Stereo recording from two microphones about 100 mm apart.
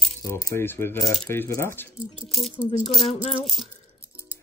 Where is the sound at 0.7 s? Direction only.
25° left (ahead or behind).